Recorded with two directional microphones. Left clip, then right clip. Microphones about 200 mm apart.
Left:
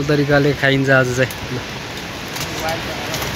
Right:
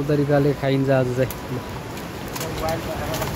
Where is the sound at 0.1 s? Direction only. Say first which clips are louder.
Left 4 dB; 5° left (ahead or behind).